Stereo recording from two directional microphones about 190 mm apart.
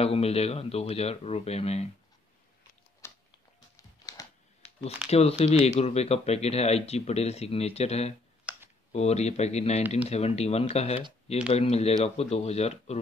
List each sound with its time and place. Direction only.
0.0 s speech: 30° left (ahead or behind)
3.0 s tick-tock: 15° left (ahead or behind)
3.7 s a sound: 15° left (ahead or behind)
5.0 s speech: 5° right (ahead or behind)
5.4 s speech: 35° left (ahead or behind)
8.5 s computer keyboard: 5° right (ahead or behind)
8.9 s speech: 35° left (ahead or behind)